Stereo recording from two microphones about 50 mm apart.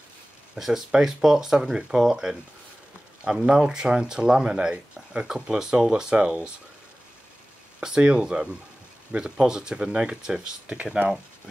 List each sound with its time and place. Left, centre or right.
0.6 s speech: centre; by 6.5 s right
7.8 s speech: centre